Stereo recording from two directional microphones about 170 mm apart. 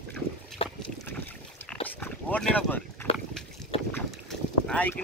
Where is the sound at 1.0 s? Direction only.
10° left (ahead or behind).